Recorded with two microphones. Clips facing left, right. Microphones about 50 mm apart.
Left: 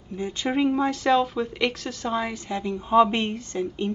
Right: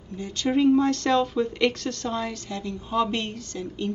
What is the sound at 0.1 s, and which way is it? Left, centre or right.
Speech, centre.